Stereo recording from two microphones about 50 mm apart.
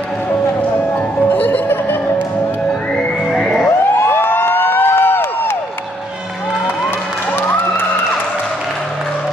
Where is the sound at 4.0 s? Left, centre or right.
Left.